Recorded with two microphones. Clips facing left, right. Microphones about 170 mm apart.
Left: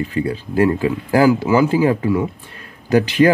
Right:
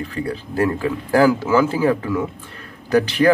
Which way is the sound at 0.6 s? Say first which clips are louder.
Left 4 dB; 10° left (ahead or behind).